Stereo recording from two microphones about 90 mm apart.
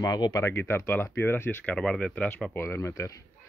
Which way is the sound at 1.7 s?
10° left (ahead or behind).